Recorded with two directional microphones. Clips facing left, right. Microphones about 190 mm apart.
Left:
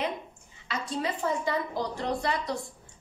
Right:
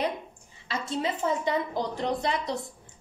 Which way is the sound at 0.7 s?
25° right (ahead or behind).